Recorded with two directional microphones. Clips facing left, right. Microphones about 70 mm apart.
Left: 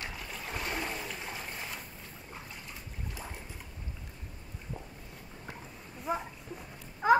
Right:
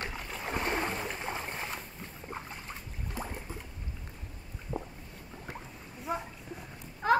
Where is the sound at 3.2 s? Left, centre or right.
Right.